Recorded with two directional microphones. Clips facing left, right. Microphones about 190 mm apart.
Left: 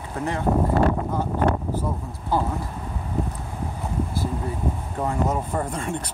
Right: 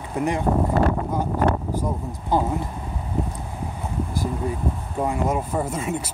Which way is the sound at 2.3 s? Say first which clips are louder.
Right 2 dB; 20° right (ahead or behind).